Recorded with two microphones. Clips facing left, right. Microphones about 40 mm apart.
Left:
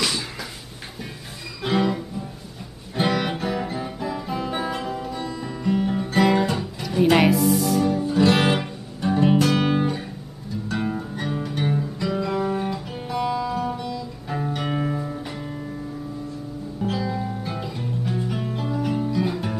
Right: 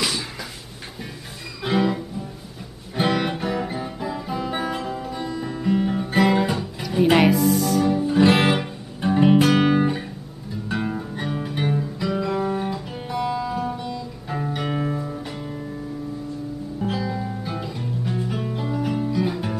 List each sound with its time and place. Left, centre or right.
1.6 s guitar: centre
3.0 s music: centre
7.9 s music: right
9.0 s guitar: centre
10.8 s music: centre
16.8 s music: centre